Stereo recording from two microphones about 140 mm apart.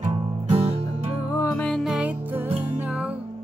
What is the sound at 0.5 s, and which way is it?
Music, 40° right (ahead or behind).